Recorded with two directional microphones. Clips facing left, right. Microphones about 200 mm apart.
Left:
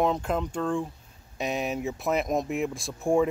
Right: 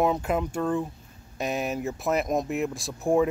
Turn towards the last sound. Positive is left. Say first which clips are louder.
# right 1 dB
turn(degrees=0)  # may be behind; listen again after turning